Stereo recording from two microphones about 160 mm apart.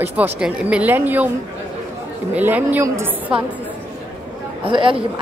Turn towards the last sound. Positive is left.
turn(degrees=-30)  # may be behind; listen again after turning